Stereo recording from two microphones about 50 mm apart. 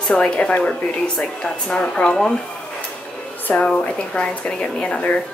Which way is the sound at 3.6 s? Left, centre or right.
Centre.